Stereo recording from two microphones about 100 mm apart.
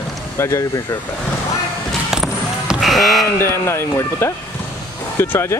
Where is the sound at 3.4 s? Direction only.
25° left (ahead or behind).